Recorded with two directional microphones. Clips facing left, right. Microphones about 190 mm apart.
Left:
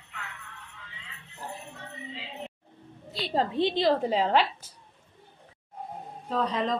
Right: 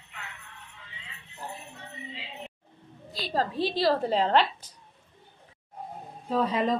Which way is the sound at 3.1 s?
25° left (ahead or behind).